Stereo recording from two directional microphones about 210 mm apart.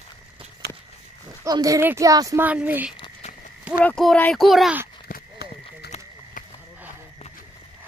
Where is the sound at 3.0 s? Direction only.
30° left (ahead or behind).